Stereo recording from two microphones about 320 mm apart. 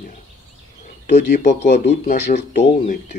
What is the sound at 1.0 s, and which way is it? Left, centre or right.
Speech, left.